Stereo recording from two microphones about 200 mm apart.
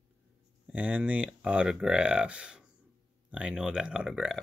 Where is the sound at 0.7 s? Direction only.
5° right (ahead or behind).